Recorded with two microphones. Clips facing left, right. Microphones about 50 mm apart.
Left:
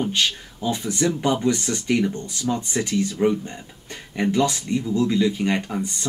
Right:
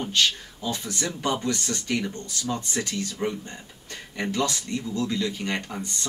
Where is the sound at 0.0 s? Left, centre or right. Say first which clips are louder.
Left 1 dB; left.